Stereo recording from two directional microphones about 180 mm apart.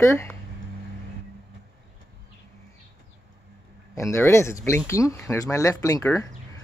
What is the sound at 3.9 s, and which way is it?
Speech, 15° left (ahead or behind).